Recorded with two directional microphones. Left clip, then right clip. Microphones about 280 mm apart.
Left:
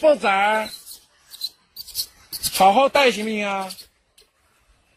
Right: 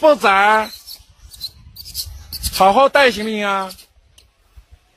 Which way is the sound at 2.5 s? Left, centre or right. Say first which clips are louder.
Right 4 dB; right.